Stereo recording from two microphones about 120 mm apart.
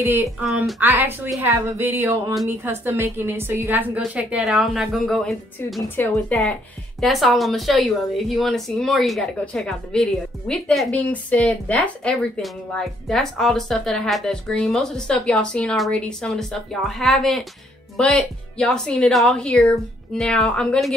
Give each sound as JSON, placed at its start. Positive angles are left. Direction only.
{"t": 0.0, "sound": "a woman's voice", "side_deg": -20}
{"t": 0.4, "sound": "speech", "side_deg": -5}
{"t": 0.7, "sound": "a woman's voice", "side_deg": -15}